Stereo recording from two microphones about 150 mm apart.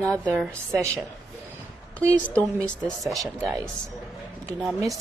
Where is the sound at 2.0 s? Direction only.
20° right (ahead or behind).